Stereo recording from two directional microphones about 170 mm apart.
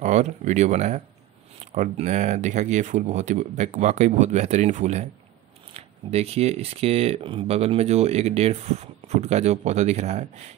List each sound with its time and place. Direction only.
0.0 s speech: 45° right (ahead or behind)